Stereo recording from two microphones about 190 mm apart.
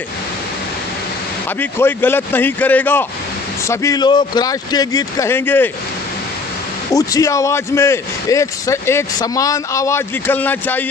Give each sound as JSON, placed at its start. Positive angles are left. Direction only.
{"t": 1.6, "sound": "a man's voice", "side_deg": 10}
{"t": 6.9, "sound": "a man's voice", "side_deg": 20}